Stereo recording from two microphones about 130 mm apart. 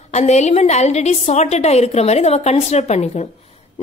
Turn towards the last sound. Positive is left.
turn(degrees=55)  # may be behind; listen again after turning